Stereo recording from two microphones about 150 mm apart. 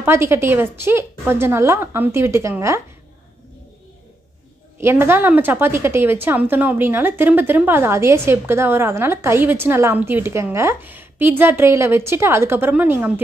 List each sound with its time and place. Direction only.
0.0 s a woman's voice: 15° right (ahead or behind)
4.7 s a woman's voice: 15° right (ahead or behind)